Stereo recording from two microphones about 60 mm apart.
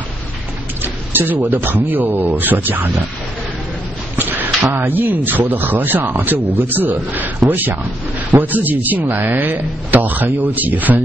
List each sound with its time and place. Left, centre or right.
0.8 s speech: right
4.2 s a sound: right
4.7 s a man's voice: right